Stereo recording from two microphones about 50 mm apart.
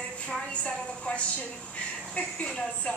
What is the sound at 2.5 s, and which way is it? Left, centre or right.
Speech, centre.